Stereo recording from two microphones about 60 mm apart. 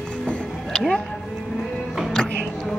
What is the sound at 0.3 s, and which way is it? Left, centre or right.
Music, centre.